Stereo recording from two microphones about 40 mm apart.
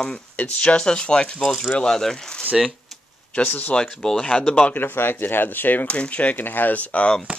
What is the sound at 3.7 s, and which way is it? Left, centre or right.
Speech, left.